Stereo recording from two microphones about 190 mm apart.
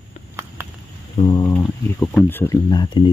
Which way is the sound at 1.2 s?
20° left (ahead or behind).